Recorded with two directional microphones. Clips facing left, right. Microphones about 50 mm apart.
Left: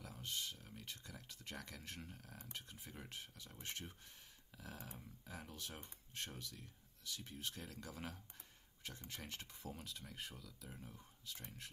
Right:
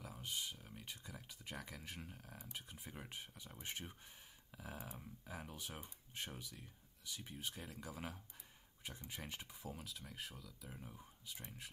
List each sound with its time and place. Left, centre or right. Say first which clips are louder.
0.0 s speech: right 1 dB; centre